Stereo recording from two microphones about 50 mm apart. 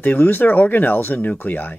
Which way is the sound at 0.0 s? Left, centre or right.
Left.